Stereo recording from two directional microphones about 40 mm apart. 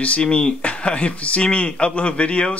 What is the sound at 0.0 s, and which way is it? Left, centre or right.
Speech, left.